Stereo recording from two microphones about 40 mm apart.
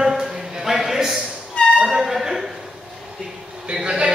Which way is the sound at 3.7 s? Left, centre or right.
Right.